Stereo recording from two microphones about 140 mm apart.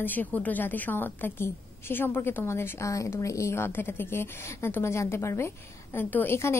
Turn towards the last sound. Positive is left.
turn(degrees=20)  # may be behind; listen again after turning